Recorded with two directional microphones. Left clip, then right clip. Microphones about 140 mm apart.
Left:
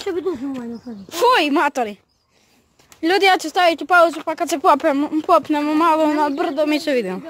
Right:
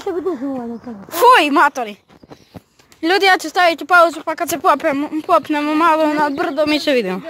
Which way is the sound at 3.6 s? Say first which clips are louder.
Right 2 dB; 30° left (ahead or behind).